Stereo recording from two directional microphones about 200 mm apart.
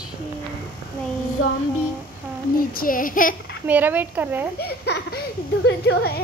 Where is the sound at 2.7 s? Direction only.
45° left (ahead or behind).